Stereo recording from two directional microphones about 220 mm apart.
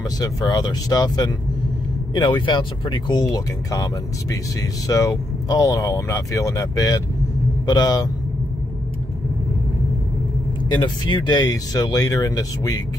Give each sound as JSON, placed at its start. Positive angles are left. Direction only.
{"t": 0.2, "sound": "speech", "side_deg": 15}
{"t": 10.7, "sound": "speech", "side_deg": 20}